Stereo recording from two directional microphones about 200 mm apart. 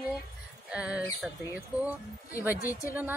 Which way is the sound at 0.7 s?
5° right (ahead or behind).